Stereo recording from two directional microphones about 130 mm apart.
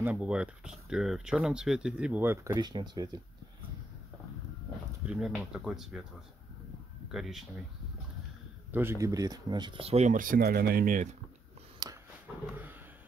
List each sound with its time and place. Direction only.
0.0 s speech: 10° right (ahead or behind); by 3.2 s 35° right (ahead or behind)
5.0 s speech: 5° right (ahead or behind)
7.1 s speech: 5° right (ahead or behind)
8.7 s speech: 20° right (ahead or behind); by 10.4 s 90° right
10.9 s speech: 75° right (ahead or behind)
11.8 s a sound: 30° right (ahead or behind)
12.4 s speech: 15° right (ahead or behind)